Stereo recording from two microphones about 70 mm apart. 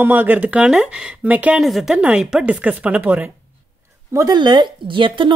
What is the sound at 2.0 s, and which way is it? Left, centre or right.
Speech, centre.